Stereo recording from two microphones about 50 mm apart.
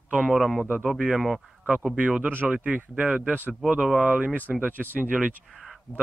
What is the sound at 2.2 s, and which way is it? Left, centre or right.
Speech, right.